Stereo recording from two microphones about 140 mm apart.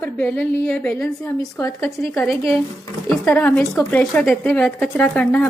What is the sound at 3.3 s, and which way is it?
Speech, 15° left (ahead or behind).